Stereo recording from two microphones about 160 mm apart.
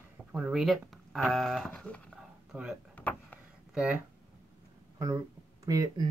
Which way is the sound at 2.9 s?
10° left (ahead or behind).